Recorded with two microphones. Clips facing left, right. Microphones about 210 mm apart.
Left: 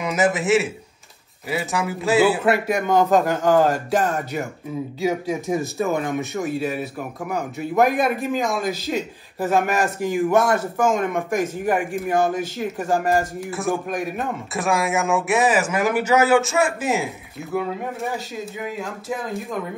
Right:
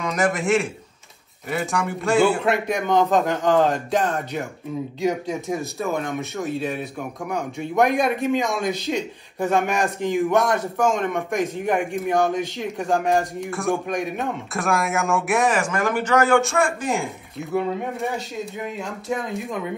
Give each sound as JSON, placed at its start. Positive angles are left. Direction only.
{"t": 0.0, "sound": "speech", "side_deg": 5}